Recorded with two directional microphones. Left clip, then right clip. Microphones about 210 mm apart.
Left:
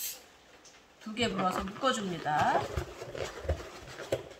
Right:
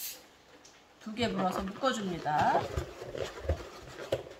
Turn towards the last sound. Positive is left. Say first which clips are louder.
# even
turn(degrees=-5)  # may be behind; listen again after turning